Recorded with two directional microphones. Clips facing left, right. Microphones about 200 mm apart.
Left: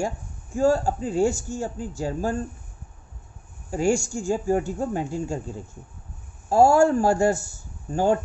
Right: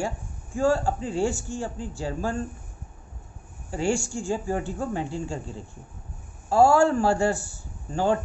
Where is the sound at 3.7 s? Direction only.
45° left (ahead or behind).